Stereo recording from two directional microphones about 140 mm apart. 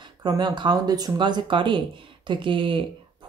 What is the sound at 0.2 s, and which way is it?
Speech, 30° right (ahead or behind).